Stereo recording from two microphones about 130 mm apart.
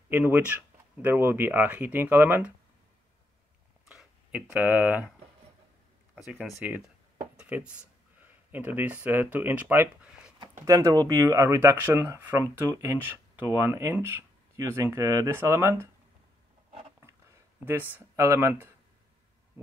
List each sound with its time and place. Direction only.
0.1 s speech: 15° right (ahead or behind)
3.9 s speech: 5° right (ahead or behind)
6.1 s speech: 5° right (ahead or behind)
10.6 s speech: 25° right (ahead or behind)
17.6 s speech: 15° right (ahead or behind)